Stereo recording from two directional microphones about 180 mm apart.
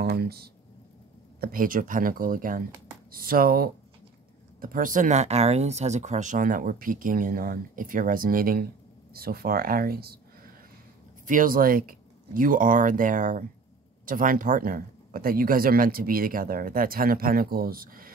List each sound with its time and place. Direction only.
0.0 s speech: 60° right (ahead or behind)
11.2 s speech: 50° right (ahead or behind)